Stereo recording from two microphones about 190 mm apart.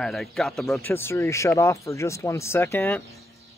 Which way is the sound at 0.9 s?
10° left (ahead or behind).